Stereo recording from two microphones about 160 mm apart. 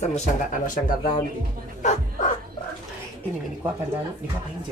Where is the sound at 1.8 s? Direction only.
45° left (ahead or behind).